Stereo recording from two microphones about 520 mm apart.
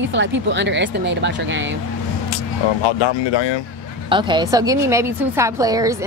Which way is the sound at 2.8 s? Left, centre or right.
Left.